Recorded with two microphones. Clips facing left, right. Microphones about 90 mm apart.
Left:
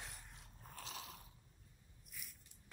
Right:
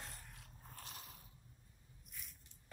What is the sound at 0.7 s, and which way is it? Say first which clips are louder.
Mechanisms: left 4 dB; 85° left.